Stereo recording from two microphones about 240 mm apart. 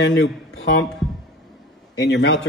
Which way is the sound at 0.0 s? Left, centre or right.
Left.